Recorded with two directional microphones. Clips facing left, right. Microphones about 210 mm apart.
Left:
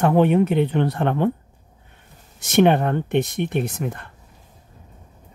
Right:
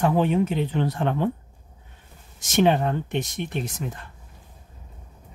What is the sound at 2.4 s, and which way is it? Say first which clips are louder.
Speech: left 4 dB; 60° left (ahead or behind).